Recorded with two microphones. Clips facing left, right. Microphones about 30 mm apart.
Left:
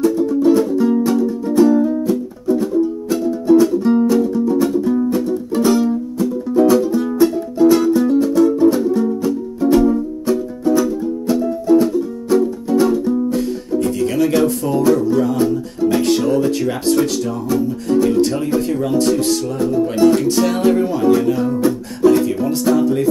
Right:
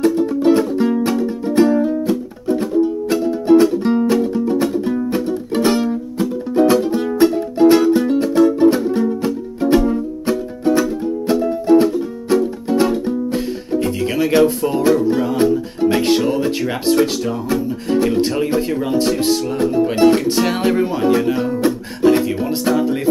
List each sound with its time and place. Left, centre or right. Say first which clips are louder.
0.2 s music: left 1 dB; right
16.3 s speech: left 2 dB; right
17.5 s music: left 3 dB; right
19.6 s music: even; right
20.2 s music: left 1 dB; right